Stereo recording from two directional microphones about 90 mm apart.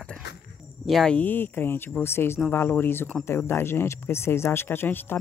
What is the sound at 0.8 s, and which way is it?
Speech, 5° left (ahead or behind).